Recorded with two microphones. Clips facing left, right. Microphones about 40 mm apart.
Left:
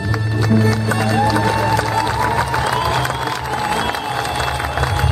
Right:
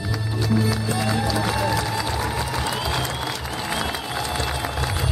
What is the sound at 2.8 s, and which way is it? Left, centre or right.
Applause, left.